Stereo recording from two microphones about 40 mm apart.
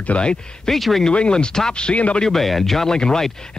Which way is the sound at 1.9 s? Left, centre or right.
Left.